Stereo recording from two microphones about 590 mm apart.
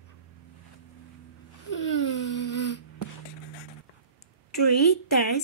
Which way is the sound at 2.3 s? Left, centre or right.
Left.